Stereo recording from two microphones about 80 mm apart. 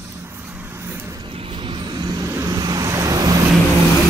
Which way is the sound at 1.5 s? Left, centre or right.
Right.